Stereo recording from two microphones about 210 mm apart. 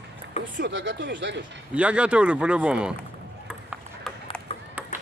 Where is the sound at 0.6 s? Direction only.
60° right (ahead or behind).